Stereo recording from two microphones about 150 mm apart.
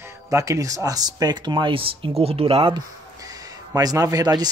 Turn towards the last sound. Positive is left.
turn(degrees=-25)  # may be behind; listen again after turning